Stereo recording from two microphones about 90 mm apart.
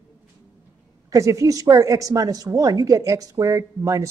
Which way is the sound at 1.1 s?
35° right (ahead or behind).